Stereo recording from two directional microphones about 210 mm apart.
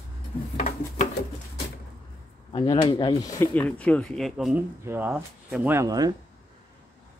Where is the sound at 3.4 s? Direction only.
5° left (ahead or behind); by 6.1 s 15° right (ahead or behind).